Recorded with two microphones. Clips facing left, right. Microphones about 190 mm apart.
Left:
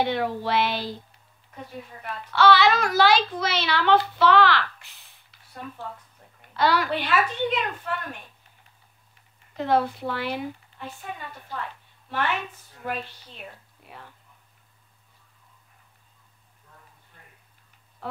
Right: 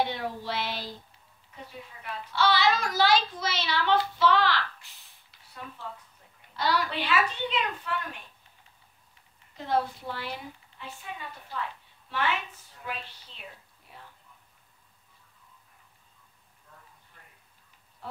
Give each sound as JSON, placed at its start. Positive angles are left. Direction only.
{"t": 0.0, "sound": "a child's voice", "side_deg": 65}
{"t": 1.5, "sound": "a child's voice", "side_deg": 50}
{"t": 6.5, "sound": "a woman's voice", "side_deg": 70}
{"t": 9.6, "sound": "a child's voice", "side_deg": 70}
{"t": 10.8, "sound": "speech", "side_deg": 50}
{"t": 12.8, "sound": "a woman's voice", "side_deg": 50}